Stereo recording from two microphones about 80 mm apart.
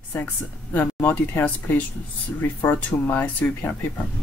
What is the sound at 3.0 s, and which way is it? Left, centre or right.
Speech, left.